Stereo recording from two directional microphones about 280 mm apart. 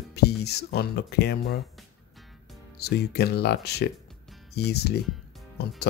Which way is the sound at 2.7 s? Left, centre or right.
Left.